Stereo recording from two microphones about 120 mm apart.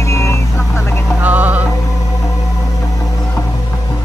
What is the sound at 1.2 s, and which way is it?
Music, 15° right (ahead or behind).